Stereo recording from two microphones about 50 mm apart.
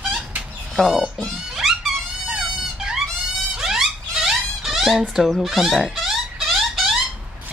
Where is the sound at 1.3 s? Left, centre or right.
Centre.